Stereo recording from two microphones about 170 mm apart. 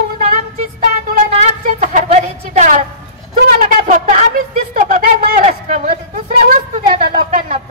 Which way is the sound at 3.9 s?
50° right (ahead or behind).